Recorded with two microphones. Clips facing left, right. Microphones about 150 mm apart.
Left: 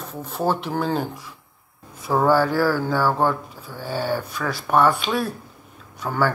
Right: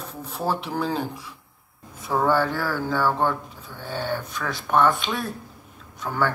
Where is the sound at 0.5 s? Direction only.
Centre (ahead or behind).